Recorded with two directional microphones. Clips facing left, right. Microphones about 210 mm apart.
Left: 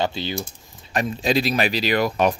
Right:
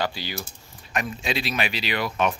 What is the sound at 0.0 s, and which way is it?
Speech, 25° left (ahead or behind).